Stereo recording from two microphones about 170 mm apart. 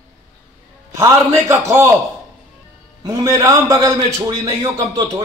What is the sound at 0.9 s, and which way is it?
Speech, 15° right (ahead or behind).